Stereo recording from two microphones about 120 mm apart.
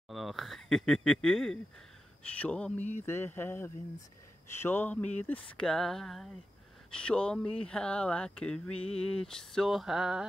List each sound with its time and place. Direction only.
0.1 s speech: centre (ahead or behind)